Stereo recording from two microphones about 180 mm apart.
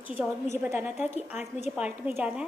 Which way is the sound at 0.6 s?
10° right (ahead or behind).